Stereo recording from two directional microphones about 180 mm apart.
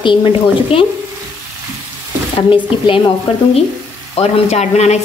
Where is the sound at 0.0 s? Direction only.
30° left (ahead or behind).